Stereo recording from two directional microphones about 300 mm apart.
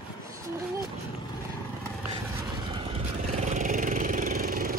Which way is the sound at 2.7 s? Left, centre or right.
Centre.